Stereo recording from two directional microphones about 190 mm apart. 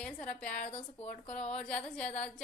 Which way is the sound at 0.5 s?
40° left (ahead or behind).